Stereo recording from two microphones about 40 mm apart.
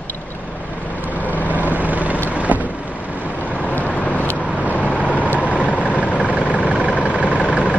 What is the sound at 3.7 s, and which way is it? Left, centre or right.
Vehicle, left.